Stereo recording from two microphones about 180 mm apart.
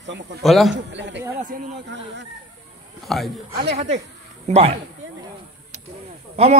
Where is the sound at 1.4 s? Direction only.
45° right (ahead or behind).